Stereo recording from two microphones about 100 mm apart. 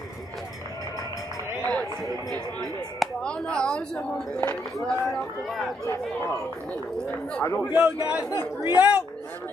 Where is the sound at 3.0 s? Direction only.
10° left (ahead or behind).